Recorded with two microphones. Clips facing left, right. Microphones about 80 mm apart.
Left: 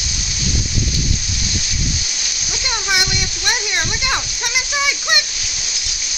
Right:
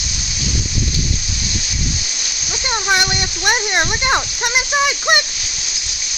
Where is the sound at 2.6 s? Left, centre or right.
Right.